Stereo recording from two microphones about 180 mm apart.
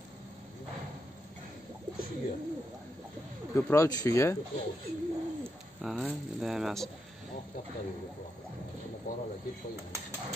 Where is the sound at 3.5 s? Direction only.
15° left (ahead or behind).